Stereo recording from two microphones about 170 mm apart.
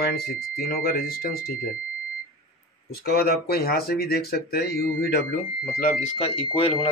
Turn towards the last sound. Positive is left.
turn(degrees=30)  # may be behind; listen again after turning